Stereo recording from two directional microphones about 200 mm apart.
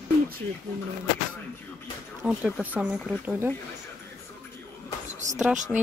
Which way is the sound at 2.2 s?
5° right (ahead or behind).